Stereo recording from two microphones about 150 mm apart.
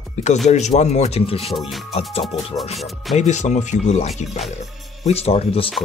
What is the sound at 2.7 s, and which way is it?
Speech, centre (ahead or behind).